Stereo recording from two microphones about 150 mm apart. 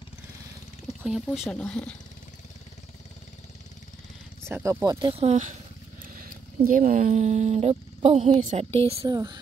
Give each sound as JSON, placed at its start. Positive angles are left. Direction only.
{"t": 1.0, "sound": "speech", "side_deg": 0}
{"t": 4.5, "sound": "speech", "side_deg": -15}
{"t": 4.8, "sound": "speech", "side_deg": -30}
{"t": 5.1, "sound": "speech", "side_deg": -45}
{"t": 6.0, "sound": "speech", "side_deg": -70}
{"t": 9.0, "sound": "speech", "side_deg": -25}